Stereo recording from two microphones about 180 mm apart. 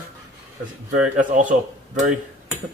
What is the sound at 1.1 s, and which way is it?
Speech, 45° right (ahead or behind).